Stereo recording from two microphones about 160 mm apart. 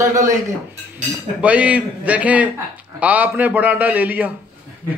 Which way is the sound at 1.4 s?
10° right (ahead or behind).